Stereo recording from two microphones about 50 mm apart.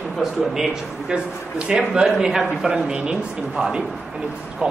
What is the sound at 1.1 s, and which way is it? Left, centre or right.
Speech, centre.